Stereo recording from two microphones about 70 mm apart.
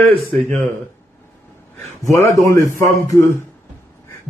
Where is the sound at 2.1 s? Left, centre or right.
Left.